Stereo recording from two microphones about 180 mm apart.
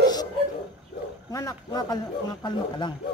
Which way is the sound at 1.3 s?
20° left (ahead or behind).